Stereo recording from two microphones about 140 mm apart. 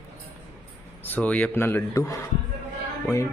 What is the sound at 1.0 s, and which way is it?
Speech, 10° left (ahead or behind).